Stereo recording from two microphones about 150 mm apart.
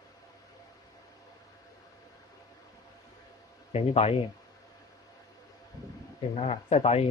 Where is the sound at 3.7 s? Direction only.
40° left (ahead or behind).